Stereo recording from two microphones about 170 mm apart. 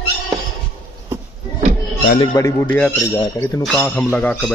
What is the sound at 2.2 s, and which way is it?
A man's voice, 20° left (ahead or behind).